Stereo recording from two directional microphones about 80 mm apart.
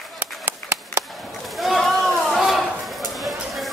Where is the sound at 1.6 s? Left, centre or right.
Centre.